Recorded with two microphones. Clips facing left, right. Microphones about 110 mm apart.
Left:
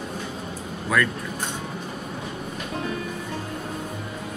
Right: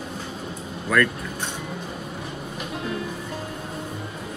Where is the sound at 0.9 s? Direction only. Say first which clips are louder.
Right 2 dB; 5° left (ahead or behind).